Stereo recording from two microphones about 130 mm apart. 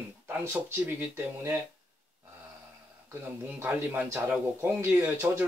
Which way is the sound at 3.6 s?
15° right (ahead or behind).